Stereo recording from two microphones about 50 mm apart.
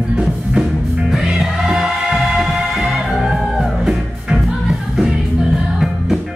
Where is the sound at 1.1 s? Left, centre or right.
Centre.